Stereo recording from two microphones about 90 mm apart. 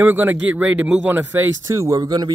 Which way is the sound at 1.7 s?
40° right (ahead or behind).